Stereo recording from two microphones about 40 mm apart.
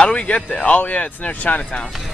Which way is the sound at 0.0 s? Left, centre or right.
Left.